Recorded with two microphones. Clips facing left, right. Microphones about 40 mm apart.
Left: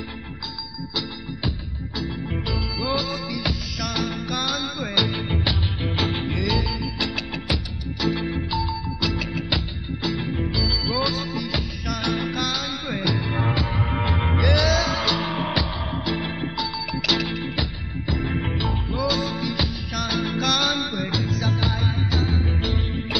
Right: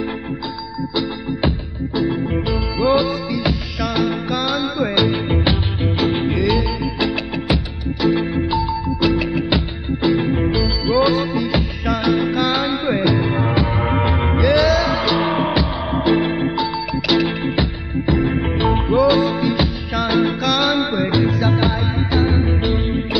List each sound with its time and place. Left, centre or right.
2.0 s music: centre
5.9 s music: centre
6.2 s music: right
12.1 s music: centre
12.4 s music: right; by 15.7 s centre
15.9 s music: right
18.6 s music: right